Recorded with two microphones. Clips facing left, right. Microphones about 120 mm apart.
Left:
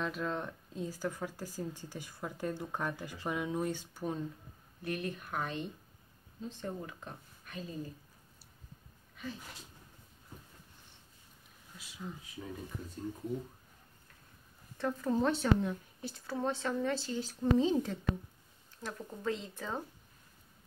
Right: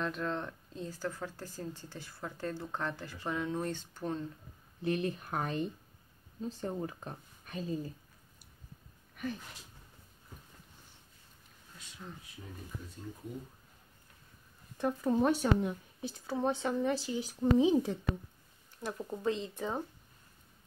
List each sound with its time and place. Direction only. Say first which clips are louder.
0.0 s speech: right 1 dB; 5° left (ahead or behind)
4.8 s speech: right 5 dB; 30° right (ahead or behind)
9.1 s a sound: right 5 dB; 60° right (ahead or behind)
11.7 s speech: left 3 dB; 5° left (ahead or behind)
14.8 s a woman's voice: right 2 dB; 15° right (ahead or behind)